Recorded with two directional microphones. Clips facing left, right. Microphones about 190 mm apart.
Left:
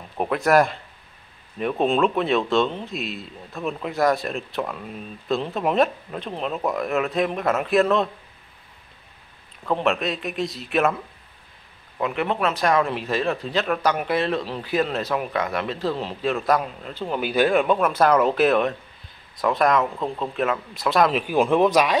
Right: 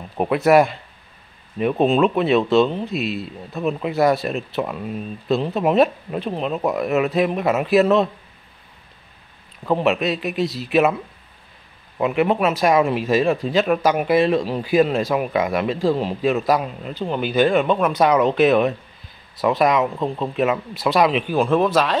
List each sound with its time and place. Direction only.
0.2 s speech: 5° right (ahead or behind)
9.7 s speech: 5° right (ahead or behind)
12.0 s speech: 10° right (ahead or behind)
21.3 s a man's voice: 15° left (ahead or behind)